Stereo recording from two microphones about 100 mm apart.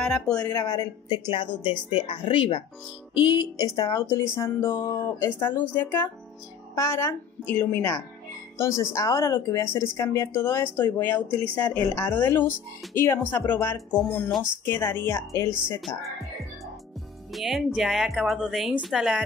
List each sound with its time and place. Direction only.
0.0 s speech: 10° left (ahead or behind)
0.4 s speech: 35° left (ahead or behind)
1.1 s speech: 55° left (ahead or behind)
3.2 s music: 50° left (ahead or behind)
3.6 s speech: 40° left (ahead or behind)
4.0 s speech: 25° left (ahead or behind)
14.6 s speech: 20° left (ahead or behind)
17.3 s a woman's voice: centre (ahead or behind)